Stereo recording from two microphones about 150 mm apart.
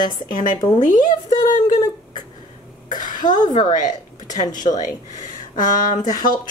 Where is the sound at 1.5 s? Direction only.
60° left (ahead or behind).